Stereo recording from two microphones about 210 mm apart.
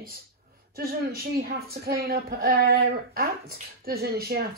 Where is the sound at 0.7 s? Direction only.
45° right (ahead or behind).